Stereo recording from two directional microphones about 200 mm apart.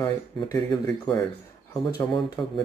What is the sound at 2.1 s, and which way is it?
Speech, 20° left (ahead or behind).